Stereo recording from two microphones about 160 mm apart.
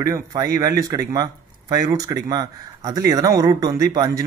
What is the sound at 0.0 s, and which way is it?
Speech, 20° right (ahead or behind).